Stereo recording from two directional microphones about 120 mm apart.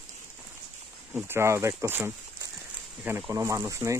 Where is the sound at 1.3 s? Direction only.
20° right (ahead or behind).